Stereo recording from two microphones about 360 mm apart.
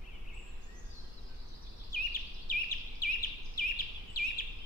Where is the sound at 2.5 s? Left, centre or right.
Left.